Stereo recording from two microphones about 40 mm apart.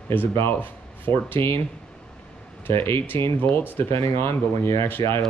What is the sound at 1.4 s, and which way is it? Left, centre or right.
Speech, left.